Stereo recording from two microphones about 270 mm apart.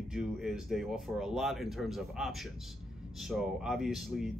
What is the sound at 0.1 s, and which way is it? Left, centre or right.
Speech, centre.